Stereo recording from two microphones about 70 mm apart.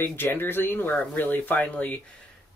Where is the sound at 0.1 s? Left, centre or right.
Left.